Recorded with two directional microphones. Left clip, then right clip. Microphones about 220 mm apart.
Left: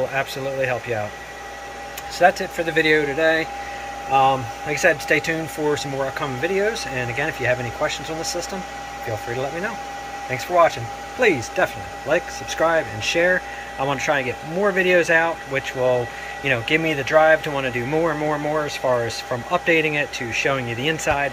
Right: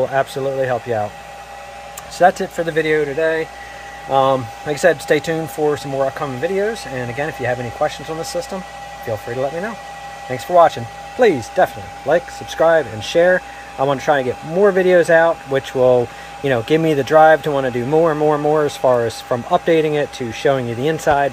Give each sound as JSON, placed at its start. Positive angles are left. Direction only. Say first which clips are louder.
{"t": 0.1, "sound": "speech", "louder": "right 6 dB", "side_deg": -25}
{"t": 2.1, "sound": "speech", "louder": "right 3 dB", "side_deg": -30}
{"t": 4.6, "sound": "speech", "louder": "right 3 dB", "side_deg": -30}
{"t": 10.3, "sound": "speech", "louder": "right 5 dB", "side_deg": -30}